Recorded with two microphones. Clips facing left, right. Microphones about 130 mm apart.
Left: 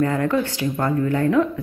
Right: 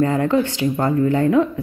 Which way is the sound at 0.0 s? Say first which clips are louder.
Right 3 dB; 20° right (ahead or behind).